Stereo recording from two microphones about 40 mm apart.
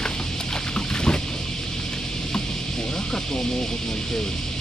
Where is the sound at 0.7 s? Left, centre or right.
Left.